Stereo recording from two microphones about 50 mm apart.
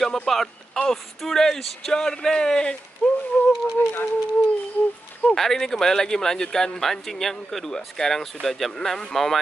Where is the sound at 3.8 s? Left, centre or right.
Left.